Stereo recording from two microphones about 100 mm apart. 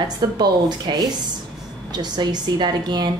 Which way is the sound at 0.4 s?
45° right (ahead or behind).